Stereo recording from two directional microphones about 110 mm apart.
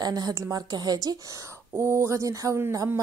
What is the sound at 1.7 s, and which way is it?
Speech, 25° right (ahead or behind).